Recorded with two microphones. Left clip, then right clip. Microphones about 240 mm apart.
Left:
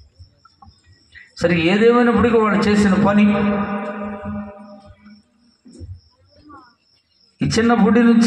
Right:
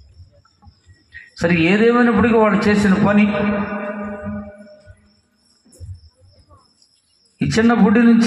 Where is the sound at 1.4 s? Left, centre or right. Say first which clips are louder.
Even; right.